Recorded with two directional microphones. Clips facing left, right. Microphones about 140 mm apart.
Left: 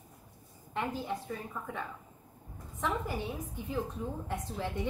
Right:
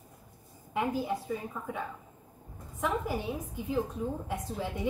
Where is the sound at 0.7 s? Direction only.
10° right (ahead or behind).